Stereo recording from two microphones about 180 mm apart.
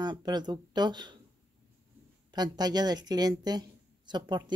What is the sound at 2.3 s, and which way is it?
A woman's voice, 20° right (ahead or behind).